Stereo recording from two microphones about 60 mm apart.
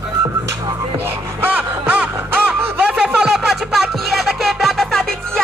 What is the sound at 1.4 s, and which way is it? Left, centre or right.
Music, right.